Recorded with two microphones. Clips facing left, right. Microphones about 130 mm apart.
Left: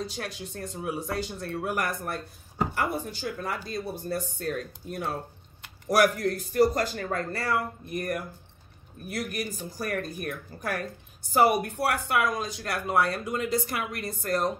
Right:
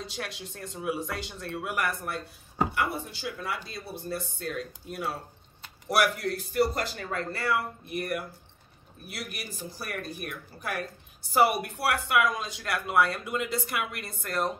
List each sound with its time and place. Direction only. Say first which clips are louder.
0.0 s speech: left 3 dB; 45° left (ahead or behind)
11.3 s speech: left 2 dB; 45° left (ahead or behind)